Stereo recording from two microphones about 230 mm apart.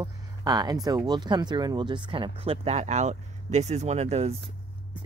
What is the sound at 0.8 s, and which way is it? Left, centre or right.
Speech, centre.